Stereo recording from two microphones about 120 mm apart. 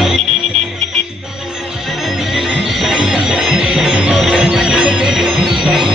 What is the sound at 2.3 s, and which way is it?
Music, centre (ahead or behind).